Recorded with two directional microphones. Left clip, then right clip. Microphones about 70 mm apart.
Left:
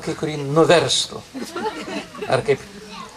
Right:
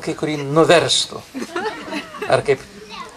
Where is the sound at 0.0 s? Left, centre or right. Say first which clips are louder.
Right 2 dB; right.